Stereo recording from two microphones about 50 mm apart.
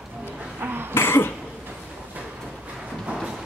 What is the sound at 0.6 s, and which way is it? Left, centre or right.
Cough, right.